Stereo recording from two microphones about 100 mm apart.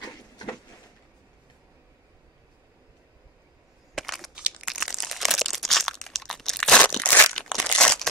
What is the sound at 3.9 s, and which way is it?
Crumpling, centre (ahead or behind).